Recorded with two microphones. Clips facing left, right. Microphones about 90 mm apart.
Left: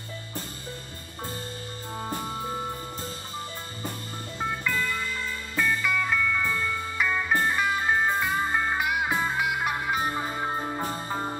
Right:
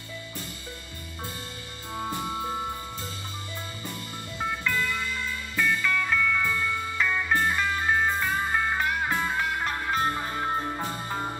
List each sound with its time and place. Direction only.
4.4 s music: 20° left (ahead or behind)